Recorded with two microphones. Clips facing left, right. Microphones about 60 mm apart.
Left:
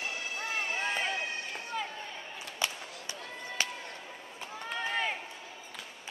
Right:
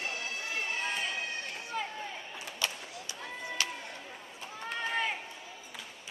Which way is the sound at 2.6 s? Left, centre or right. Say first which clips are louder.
Left 1 dB; left.